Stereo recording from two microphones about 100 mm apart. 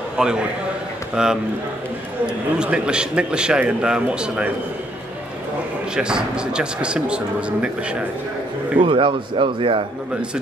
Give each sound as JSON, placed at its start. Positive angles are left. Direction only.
{"t": 0.2, "sound": "a man's voice", "side_deg": -10}
{"t": 5.9, "sound": "a man's voice", "side_deg": -10}
{"t": 8.8, "sound": "speech", "side_deg": -60}